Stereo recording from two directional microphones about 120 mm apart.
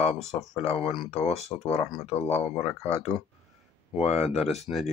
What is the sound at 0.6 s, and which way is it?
Speech, 50° left (ahead or behind).